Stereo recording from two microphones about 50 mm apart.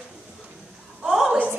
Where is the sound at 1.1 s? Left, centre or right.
Centre.